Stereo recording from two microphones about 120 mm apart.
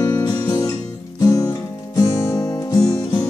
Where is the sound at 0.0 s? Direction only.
35° left (ahead or behind).